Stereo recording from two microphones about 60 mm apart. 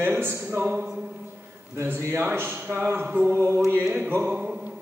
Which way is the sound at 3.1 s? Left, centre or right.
Right.